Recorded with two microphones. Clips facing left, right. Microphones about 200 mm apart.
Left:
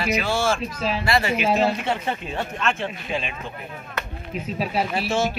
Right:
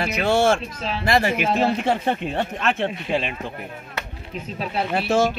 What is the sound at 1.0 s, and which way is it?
Speech, 50° right (ahead or behind).